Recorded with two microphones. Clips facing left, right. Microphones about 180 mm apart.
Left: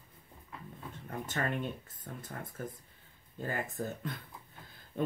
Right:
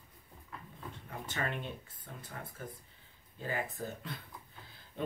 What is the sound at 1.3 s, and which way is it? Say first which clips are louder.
Speech: left 3 dB; 45° left (ahead or behind).